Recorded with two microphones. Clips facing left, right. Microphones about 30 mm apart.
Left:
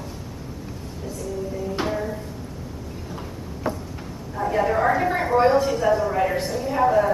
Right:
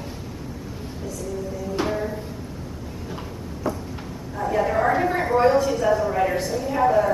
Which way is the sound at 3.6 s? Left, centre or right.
Left.